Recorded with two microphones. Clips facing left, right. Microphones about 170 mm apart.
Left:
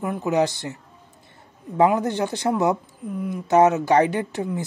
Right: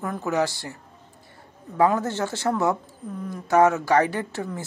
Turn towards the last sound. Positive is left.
turn(degrees=15)  # may be behind; listen again after turning